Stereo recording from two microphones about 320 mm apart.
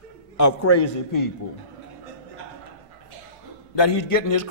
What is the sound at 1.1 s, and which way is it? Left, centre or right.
Speech, left.